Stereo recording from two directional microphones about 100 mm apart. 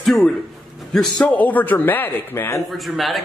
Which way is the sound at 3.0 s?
Centre (ahead or behind).